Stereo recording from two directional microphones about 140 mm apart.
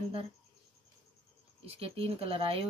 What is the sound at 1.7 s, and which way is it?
Speech, 45° right (ahead or behind).